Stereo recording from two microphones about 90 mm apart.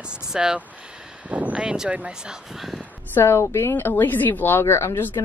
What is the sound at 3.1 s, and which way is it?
A woman's voice, 30° left (ahead or behind).